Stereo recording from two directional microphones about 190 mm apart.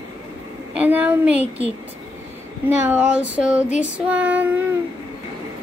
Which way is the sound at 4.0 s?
5° right (ahead or behind).